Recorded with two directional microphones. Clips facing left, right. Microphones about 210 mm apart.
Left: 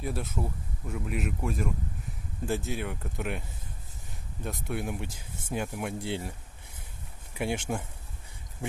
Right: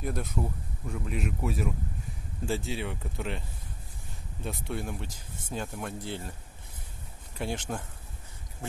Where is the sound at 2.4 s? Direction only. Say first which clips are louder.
Left 1 dB; 15° left (ahead or behind).